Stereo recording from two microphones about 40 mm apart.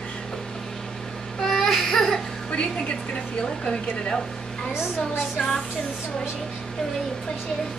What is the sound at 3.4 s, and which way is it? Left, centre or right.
Speech, centre.